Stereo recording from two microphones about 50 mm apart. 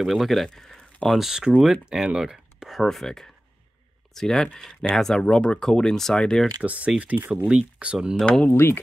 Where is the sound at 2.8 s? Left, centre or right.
Centre.